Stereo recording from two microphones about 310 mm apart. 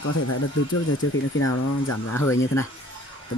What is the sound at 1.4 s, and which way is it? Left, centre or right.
Speech, left.